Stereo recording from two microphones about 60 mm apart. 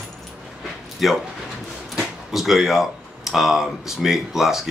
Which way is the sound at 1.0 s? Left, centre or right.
Centre.